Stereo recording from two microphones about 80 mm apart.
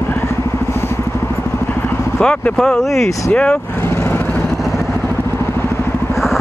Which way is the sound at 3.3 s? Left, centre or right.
Centre.